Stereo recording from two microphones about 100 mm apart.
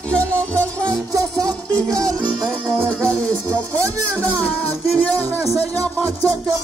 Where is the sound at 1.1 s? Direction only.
35° right (ahead or behind).